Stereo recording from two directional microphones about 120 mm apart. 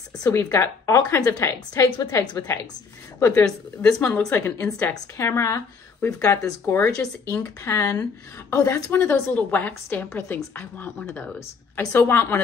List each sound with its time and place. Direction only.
0.2 s a woman's voice: 25° left (ahead or behind)